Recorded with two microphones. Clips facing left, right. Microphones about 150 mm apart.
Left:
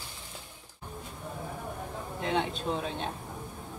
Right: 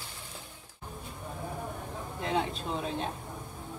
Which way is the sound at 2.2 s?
Centre (ahead or behind).